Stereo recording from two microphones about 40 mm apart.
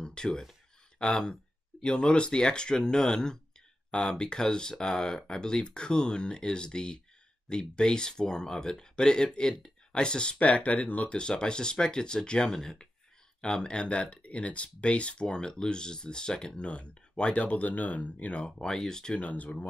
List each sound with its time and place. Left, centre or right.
0.0 s a sound: centre
1.1 s speech: centre
10.5 s speech: left
11.1 s speech: left
13.4 s speech: left
18.4 s speech: centre
19.1 s speech: left